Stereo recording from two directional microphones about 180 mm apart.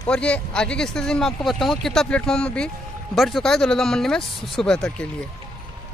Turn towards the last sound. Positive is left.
turn(degrees=5)  # may be behind; listen again after turning